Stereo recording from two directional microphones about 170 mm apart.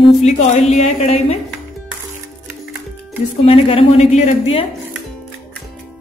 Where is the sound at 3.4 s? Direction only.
35° left (ahead or behind).